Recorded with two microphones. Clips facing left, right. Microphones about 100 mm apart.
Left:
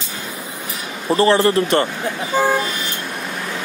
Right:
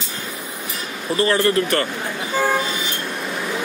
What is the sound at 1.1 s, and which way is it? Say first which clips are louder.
Speech: left 4 dB; 30° left (ahead or behind).